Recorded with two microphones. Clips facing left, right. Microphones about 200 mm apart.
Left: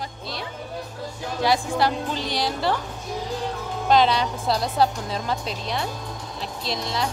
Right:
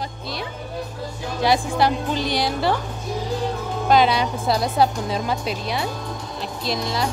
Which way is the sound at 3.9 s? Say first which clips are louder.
Right 1 dB; 10° right (ahead or behind).